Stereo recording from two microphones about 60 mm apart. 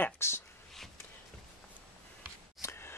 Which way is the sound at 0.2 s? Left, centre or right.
Left.